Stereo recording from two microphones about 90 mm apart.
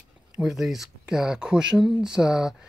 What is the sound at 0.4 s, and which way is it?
Speech, 5° right (ahead or behind).